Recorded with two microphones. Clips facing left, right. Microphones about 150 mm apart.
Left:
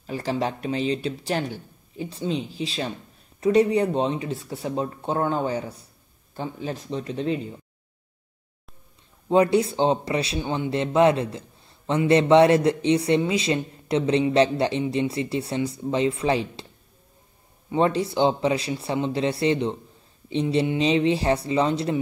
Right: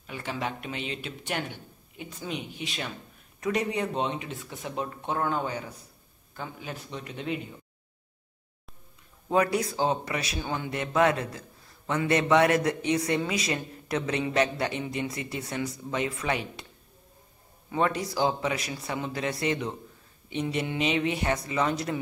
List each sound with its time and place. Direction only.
0.0 s speech: 35° left (ahead or behind)
9.3 s speech: 25° left (ahead or behind)
17.6 s speech: 30° left (ahead or behind)